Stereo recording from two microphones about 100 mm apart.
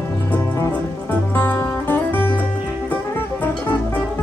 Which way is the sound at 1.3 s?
20° left (ahead or behind).